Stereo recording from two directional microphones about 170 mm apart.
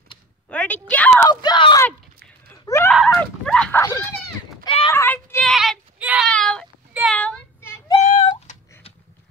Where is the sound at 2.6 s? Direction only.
15° left (ahead or behind).